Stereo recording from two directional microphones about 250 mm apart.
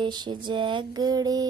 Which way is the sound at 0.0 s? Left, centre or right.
Centre.